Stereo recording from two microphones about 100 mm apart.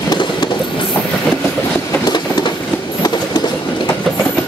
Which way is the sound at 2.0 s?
45° left (ahead or behind).